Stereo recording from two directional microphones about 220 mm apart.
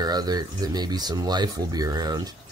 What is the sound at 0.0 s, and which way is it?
Speech, 20° right (ahead or behind).